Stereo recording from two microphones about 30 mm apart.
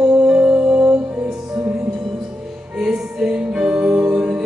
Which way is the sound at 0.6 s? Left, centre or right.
Right.